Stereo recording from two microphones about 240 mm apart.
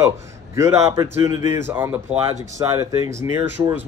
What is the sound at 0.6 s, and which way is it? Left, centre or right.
Speech, centre.